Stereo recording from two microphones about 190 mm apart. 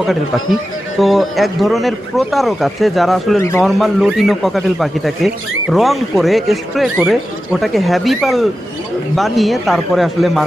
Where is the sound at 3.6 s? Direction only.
Centre (ahead or behind).